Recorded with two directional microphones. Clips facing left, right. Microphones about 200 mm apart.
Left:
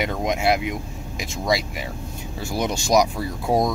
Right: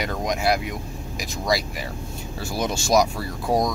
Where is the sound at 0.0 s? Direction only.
25° left (ahead or behind).